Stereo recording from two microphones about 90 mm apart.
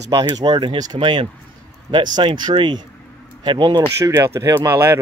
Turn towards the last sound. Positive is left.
turn(degrees=-30)  # may be behind; listen again after turning